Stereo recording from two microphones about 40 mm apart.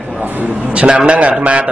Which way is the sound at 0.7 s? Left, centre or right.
Right.